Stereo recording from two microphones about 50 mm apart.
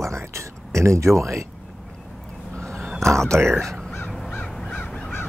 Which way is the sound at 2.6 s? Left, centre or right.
Centre.